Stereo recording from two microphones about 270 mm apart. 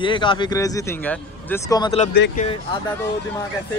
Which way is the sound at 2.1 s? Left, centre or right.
Left.